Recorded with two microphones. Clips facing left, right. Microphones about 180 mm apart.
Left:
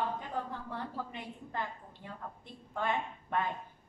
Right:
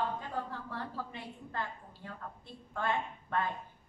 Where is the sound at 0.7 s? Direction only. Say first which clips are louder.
Left 1 dB; 15° left (ahead or behind).